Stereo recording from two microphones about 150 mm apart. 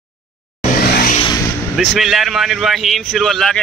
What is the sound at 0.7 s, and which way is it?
Vehicle, 85° left.